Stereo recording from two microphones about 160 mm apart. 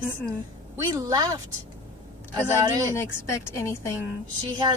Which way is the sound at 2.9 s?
15° left (ahead or behind).